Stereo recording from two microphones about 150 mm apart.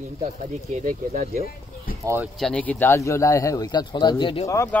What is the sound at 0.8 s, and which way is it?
Speech, 55° right (ahead or behind).